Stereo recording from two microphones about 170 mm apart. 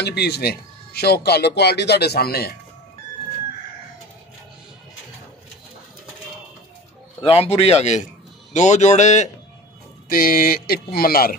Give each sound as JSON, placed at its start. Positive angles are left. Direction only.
{"t": 0.0, "sound": "speech", "side_deg": 75}
{"t": 7.2, "sound": "a man's voice", "side_deg": 35}
{"t": 10.0, "sound": "speech", "side_deg": 55}